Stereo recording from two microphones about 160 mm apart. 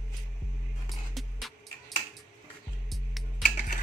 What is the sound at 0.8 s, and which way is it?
Music, centre (ahead or behind).